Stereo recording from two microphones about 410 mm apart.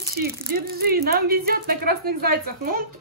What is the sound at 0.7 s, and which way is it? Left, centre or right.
Speech, right.